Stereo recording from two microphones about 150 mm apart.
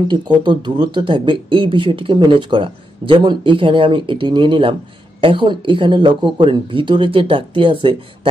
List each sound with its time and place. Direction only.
0.1 s speech: 30° right (ahead or behind)